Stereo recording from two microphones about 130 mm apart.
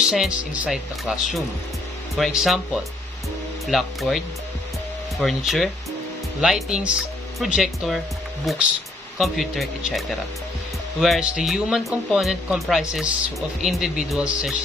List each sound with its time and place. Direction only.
0.0 s speech: centre (ahead or behind)